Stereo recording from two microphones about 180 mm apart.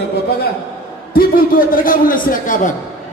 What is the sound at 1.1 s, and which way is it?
A man's voice, 55° left (ahead or behind).